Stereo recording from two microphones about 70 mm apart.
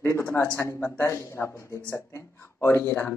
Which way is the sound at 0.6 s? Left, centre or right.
Left.